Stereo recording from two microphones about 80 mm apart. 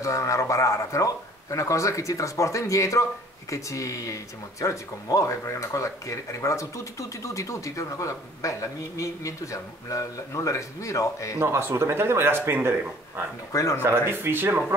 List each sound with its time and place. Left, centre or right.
0.0 s a man's voice: left
11.3 s speech: right
13.5 s a man's voice: left
13.8 s speech: right